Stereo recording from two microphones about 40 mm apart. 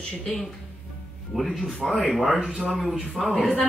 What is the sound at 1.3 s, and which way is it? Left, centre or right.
Speech, centre.